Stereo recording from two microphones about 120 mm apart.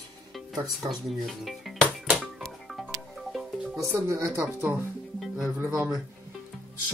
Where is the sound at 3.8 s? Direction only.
25° right (ahead or behind).